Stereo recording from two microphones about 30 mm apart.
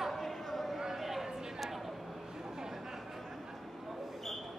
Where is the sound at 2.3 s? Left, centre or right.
Centre.